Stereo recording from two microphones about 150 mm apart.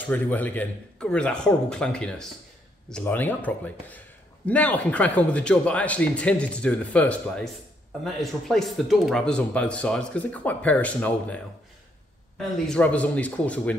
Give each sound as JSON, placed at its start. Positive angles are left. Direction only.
{"t": 0.0, "sound": "speech", "side_deg": 10}